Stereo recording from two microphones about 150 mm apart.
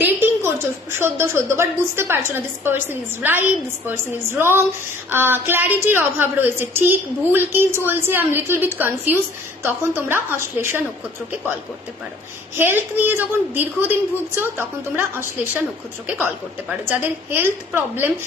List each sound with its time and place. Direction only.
0.0 s a sound: 15° right (ahead or behind)
0.9 s a woman's voice: 15° right (ahead or behind)
12.5 s a woman's voice: 15° right (ahead or behind)